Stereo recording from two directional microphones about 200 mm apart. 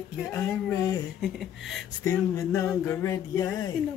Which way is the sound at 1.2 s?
Centre (ahead or behind).